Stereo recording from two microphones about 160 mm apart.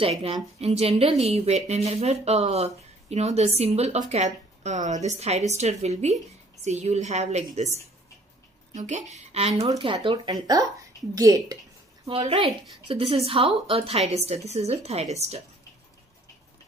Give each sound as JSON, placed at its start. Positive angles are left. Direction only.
{"t": 0.0, "sound": "a woman's voice", "side_deg": -40}
{"t": 12.1, "sound": "speech", "side_deg": -35}